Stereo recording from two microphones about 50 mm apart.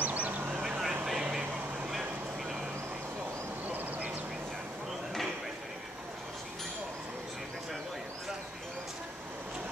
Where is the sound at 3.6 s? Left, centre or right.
Right.